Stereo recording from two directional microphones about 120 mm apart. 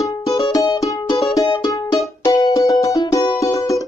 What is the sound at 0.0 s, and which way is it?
Music, 25° left (ahead or behind).